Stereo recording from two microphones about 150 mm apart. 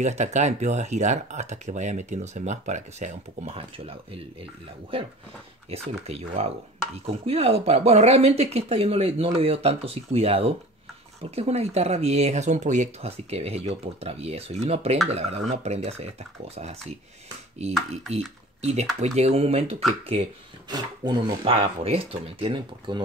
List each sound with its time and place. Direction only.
0.0 s speech: 50° right (ahead or behind)
5.7 s speech: 40° right (ahead or behind)
18.1 s speech: 45° right (ahead or behind)
20.7 s speech: 30° right (ahead or behind)